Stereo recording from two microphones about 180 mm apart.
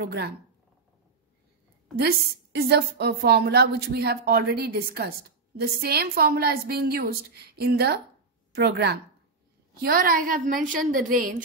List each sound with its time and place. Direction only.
0.0 s a woman's voice: 65° right (ahead or behind)
2.0 s a woman's voice: 60° right (ahead or behind)